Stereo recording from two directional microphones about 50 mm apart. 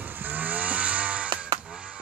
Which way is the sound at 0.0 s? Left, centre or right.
Right.